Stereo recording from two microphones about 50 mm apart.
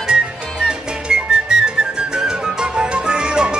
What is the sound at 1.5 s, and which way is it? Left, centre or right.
Music, right.